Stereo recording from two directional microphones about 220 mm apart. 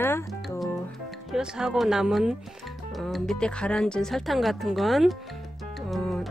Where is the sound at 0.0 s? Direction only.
10° left (ahead or behind).